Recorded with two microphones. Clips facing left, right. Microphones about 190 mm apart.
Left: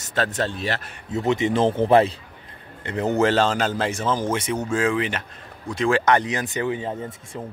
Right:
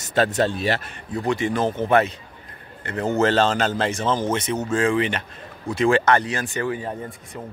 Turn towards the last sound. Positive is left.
turn(degrees=25)  # may be behind; listen again after turning